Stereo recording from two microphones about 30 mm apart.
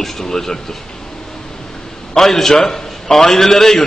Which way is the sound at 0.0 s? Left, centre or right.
Centre.